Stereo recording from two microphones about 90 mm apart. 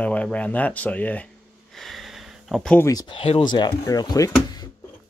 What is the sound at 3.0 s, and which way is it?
Speech, 80° left.